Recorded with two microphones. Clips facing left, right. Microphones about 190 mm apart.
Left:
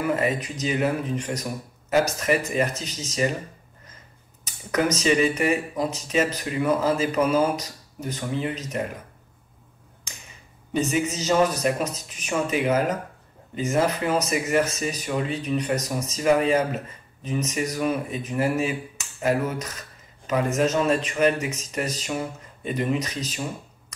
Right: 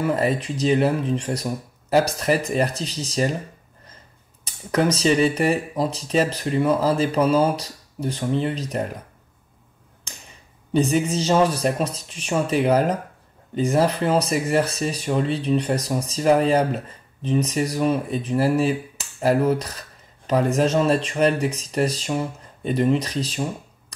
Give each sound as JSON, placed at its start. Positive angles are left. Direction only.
{"t": 0.0, "sound": "speech", "side_deg": -35}
{"t": 4.5, "sound": "speech", "side_deg": -30}
{"t": 10.7, "sound": "speech", "side_deg": -35}